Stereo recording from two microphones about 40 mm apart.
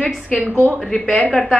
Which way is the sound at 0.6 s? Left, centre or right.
Centre.